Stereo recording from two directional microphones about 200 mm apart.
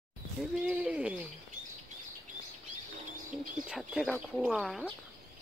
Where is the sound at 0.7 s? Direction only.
5° right (ahead or behind).